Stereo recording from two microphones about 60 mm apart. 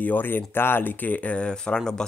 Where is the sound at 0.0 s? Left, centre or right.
Left.